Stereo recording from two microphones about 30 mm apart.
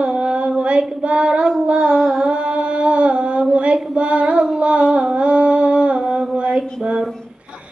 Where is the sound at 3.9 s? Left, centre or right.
Right.